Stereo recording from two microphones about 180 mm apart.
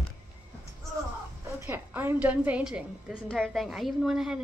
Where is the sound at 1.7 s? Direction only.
10° right (ahead or behind).